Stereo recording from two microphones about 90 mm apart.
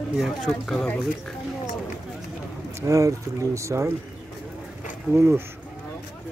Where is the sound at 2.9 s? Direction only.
35° right (ahead or behind).